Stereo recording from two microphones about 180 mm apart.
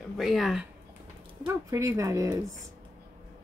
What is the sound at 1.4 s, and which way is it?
Speech, 15° right (ahead or behind).